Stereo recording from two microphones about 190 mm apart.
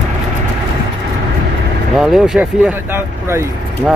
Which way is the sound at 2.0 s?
5° right (ahead or behind).